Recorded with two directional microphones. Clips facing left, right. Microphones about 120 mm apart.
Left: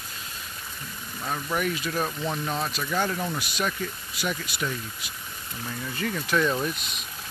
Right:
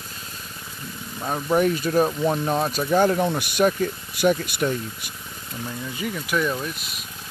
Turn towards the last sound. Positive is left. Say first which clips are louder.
# left 2 dB
turn(degrees=-5)  # may be behind; listen again after turning